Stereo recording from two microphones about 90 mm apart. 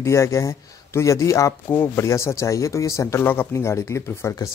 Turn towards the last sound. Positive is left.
turn(degrees=30)  # may be behind; listen again after turning